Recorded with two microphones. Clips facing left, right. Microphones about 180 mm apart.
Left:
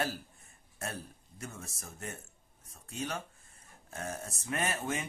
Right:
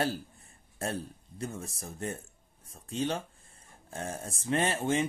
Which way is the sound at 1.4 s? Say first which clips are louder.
Right 7 dB; 30° right (ahead or behind).